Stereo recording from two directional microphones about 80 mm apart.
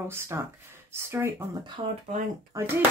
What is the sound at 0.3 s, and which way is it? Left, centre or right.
Speech, right.